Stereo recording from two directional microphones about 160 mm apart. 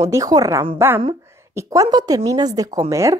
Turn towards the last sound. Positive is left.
turn(degrees=-20)  # may be behind; listen again after turning